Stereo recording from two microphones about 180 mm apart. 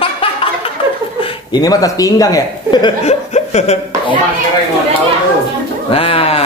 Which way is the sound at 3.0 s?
40° left (ahead or behind).